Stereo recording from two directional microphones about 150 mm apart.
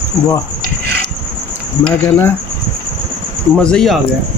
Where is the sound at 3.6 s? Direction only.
5° left (ahead or behind).